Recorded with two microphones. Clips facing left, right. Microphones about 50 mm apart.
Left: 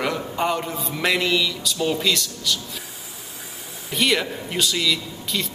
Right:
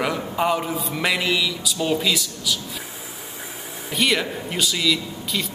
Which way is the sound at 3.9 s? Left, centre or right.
Centre.